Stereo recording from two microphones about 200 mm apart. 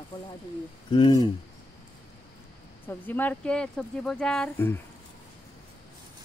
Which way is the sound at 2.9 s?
10° left (ahead or behind).